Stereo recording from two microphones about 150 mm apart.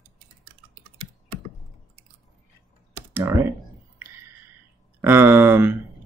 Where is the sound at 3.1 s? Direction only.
20° right (ahead or behind).